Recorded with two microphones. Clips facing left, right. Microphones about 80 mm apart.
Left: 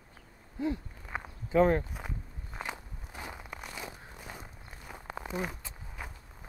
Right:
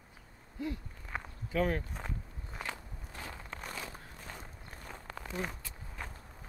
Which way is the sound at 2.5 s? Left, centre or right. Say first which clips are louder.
Left 2 dB; centre.